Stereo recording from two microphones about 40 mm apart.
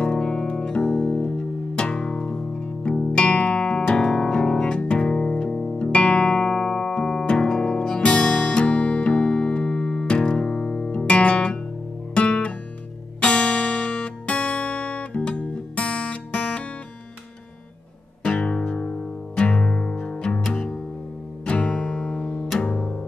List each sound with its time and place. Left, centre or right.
0.0 s music: left
5.8 s music: left
12.1 s guitar: left
13.2 s music: left
18.2 s music: left